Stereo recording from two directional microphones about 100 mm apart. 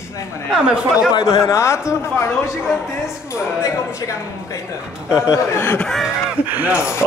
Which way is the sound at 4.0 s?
30° left (ahead or behind).